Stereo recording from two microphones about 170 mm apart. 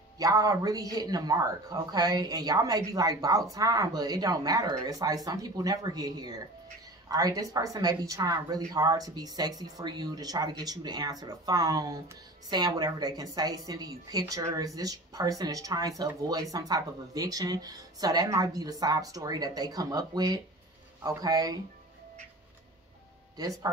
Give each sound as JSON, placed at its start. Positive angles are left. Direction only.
{"t": 0.2, "sound": "speech", "side_deg": -20}